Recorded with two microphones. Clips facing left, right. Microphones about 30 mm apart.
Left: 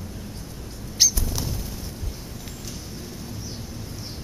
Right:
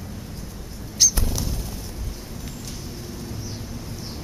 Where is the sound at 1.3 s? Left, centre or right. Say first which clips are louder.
Right 1 dB; centre.